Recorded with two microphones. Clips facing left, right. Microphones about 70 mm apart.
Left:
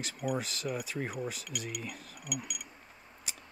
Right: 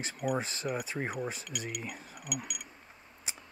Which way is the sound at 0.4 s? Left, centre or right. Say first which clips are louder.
Right 2 dB; right.